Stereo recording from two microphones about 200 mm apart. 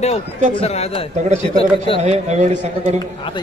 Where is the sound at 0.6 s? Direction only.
30° left (ahead or behind).